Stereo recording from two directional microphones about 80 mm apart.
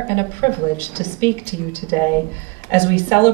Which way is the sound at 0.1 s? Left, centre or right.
Left.